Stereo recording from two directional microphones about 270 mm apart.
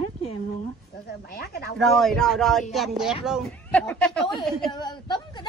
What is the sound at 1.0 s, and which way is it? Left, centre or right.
Speech, left.